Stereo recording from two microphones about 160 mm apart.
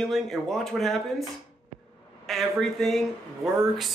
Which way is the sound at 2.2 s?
Centre (ahead or behind).